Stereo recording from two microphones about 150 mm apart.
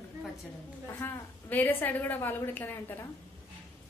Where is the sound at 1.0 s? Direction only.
15° left (ahead or behind).